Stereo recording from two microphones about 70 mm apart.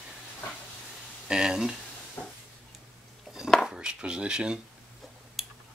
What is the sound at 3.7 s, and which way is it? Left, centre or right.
Speech, centre.